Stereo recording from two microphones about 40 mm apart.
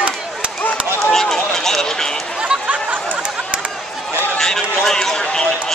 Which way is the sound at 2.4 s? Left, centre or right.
Right.